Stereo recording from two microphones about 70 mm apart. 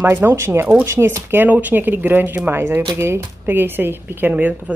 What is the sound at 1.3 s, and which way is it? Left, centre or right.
Speech, right.